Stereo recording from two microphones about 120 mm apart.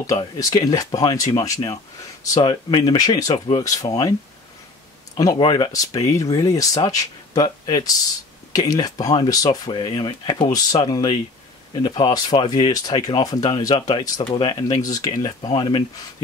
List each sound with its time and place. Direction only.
0.0 s speech: 30° left (ahead or behind)
5.1 s speech: 30° left (ahead or behind)